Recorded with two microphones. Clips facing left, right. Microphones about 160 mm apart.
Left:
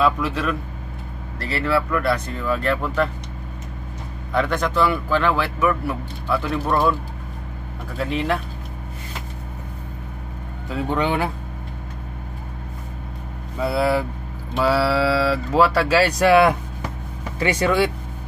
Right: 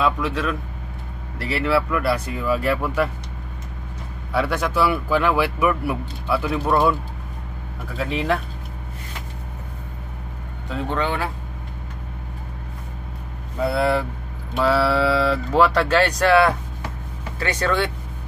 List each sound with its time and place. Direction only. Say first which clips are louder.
0.0 s a man's voice: left 1 dB; centre (ahead or behind)
4.3 s a man's voice: left 1 dB; 5° right (ahead or behind)
8.0 s speech: even; centre (ahead or behind)
11.0 s speech: left 3 dB; 15° left (ahead or behind)
13.6 s speech: even; centre (ahead or behind)